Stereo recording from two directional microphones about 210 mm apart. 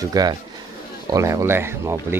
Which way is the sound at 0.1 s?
20° right (ahead or behind).